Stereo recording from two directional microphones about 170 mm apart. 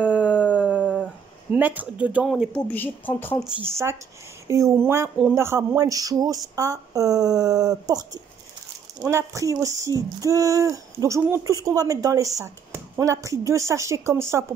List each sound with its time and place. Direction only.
0.0 s howl: 10° right (ahead or behind)
0.6 s dog: 5° right (ahead or behind)
1.5 s speech: 10° right (ahead or behind)
2.7 s a woman's voice: 10° left (ahead or behind)
3.6 s speech: 15° right (ahead or behind)